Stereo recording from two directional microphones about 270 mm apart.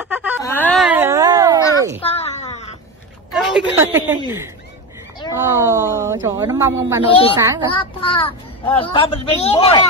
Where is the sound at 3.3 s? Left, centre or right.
Centre.